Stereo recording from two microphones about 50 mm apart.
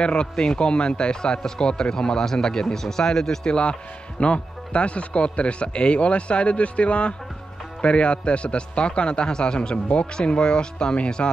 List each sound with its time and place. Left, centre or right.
0.0 s a man's voice: centre
4.2 s a man's voice: left